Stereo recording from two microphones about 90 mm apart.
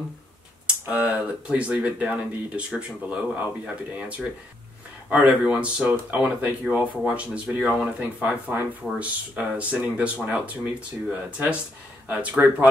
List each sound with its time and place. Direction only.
0.7 s speech: 20° right (ahead or behind)
5.1 s speech: 15° right (ahead or behind)